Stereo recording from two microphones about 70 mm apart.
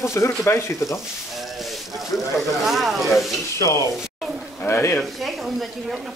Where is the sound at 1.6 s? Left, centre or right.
Centre.